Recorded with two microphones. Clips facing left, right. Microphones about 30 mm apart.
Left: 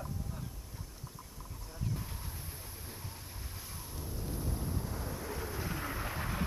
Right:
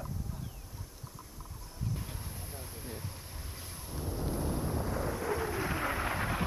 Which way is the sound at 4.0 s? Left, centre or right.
Right.